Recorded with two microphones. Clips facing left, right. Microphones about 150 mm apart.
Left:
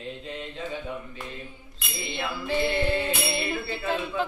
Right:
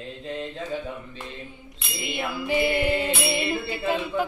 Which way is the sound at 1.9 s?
15° right (ahead or behind).